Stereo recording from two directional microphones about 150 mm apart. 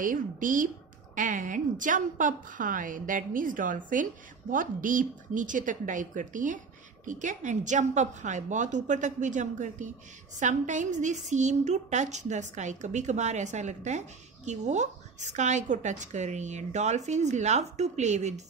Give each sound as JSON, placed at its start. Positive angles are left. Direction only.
{"t": 0.0, "sound": "a woman's voice", "side_deg": -65}